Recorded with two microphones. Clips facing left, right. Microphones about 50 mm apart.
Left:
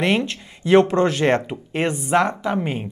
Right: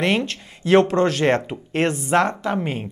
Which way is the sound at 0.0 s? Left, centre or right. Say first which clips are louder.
Left 1 dB; centre.